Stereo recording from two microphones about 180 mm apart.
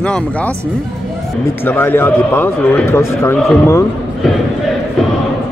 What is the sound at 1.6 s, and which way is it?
A man's voice, 10° left (ahead or behind).